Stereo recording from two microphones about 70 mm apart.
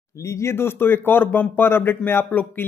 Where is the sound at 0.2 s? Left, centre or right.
Left.